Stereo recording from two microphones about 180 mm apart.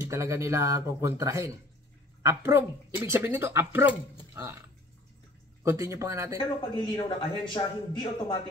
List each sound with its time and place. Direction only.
0.0 s speech: 15° right (ahead or behind)
5.6 s speech: 15° right (ahead or behind)
6.3 s a man's voice: 25° left (ahead or behind)